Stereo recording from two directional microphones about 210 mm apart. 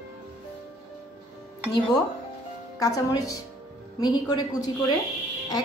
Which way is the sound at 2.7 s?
15° left (ahead or behind).